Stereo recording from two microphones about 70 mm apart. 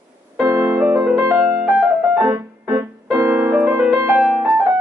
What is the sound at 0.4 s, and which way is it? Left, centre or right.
Music, right.